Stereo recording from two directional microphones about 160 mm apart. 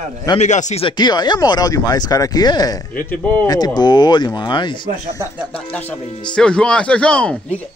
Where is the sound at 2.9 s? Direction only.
10° left (ahead or behind).